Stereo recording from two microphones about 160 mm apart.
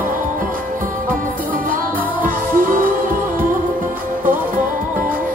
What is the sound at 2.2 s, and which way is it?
Music, 60° right (ahead or behind).